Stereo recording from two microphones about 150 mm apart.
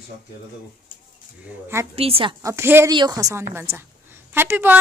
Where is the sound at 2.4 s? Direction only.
20° right (ahead or behind).